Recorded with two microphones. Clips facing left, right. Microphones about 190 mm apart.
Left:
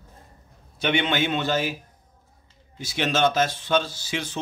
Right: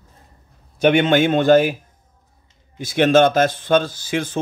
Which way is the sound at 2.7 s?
55° right (ahead or behind).